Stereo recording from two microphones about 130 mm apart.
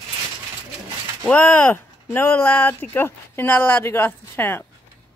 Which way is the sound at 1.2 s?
10° left (ahead or behind).